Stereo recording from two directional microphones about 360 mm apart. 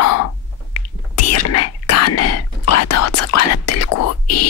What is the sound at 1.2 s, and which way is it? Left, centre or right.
Whispering, left.